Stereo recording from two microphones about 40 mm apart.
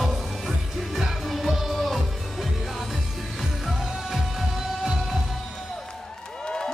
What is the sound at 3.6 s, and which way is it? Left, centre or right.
Music, centre.